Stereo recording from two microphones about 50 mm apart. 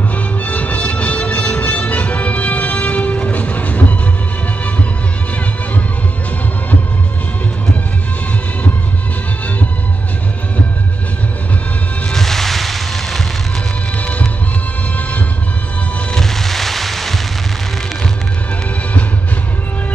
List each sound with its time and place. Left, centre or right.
0.1 s music: left
12.1 s music: centre
13.9 s music: left
16.2 s music: centre